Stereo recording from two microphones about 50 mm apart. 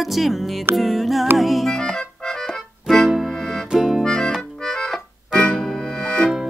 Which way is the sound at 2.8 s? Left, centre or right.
Centre.